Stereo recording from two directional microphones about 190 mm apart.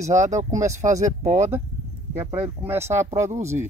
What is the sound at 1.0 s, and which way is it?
Speech, 40° right (ahead or behind).